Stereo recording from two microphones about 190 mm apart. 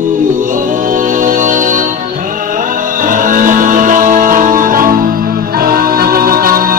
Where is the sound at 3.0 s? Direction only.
45° right (ahead or behind).